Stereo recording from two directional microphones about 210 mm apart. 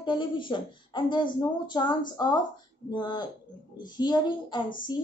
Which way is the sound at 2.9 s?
20° left (ahead or behind).